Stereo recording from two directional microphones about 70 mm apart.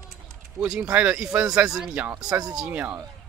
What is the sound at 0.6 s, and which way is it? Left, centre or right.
Speech, centre.